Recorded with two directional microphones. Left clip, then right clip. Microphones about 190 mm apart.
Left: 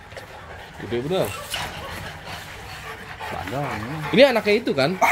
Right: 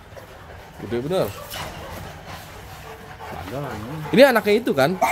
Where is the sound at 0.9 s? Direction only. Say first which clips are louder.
Right 1 dB; 5° right (ahead or behind).